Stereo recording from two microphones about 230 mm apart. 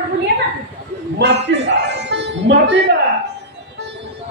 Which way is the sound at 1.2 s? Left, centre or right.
Right.